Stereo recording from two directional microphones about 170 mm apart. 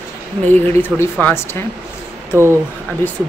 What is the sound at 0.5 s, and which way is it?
A woman's voice, 10° left (ahead or behind).